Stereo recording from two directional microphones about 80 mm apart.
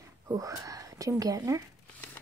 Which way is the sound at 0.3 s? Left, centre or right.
Right.